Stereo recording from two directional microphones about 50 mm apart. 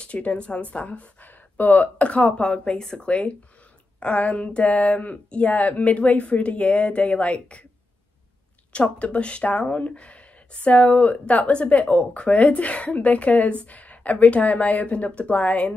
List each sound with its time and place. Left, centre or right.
0.0 s speech: left
8.7 s speech: left